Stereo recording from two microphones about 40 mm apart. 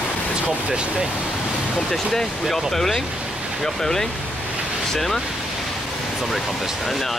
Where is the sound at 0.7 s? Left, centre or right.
Centre.